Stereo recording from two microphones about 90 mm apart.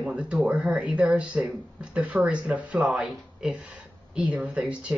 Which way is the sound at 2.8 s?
5° right (ahead or behind).